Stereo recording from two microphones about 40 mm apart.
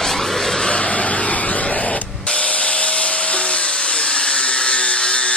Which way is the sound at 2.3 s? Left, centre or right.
Left.